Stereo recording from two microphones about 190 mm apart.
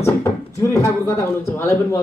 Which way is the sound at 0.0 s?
15° left (ahead or behind).